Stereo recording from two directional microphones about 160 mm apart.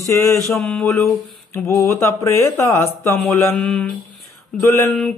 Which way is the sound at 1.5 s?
15° left (ahead or behind).